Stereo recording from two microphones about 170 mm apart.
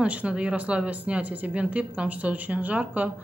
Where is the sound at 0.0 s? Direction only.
5° right (ahead or behind).